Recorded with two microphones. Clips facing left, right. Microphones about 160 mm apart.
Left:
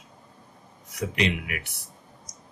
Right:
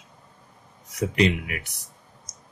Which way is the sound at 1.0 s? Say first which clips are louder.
Right 5 dB; 40° right (ahead or behind).